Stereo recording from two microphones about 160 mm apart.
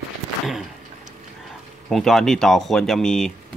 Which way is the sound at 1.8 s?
Centre (ahead or behind).